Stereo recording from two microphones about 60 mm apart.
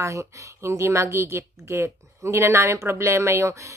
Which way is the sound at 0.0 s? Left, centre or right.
Right.